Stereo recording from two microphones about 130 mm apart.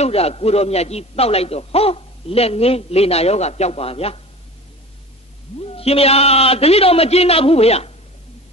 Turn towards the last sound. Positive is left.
turn(degrees=50)  # may be behind; listen again after turning